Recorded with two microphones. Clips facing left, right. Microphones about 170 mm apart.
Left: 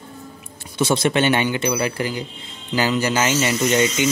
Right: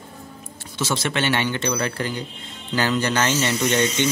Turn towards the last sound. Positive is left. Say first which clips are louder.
# left 2 dB
turn(degrees=10)  # may be behind; listen again after turning